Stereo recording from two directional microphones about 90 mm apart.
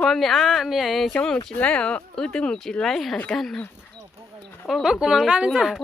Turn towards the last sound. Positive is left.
turn(degrees=-5)  # may be behind; listen again after turning